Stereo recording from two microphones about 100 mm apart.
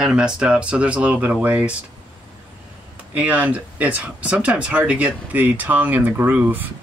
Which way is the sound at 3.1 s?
15° right (ahead or behind).